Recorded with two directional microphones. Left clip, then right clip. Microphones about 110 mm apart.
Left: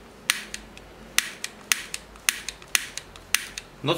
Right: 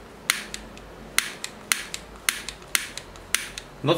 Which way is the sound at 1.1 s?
15° left (ahead or behind).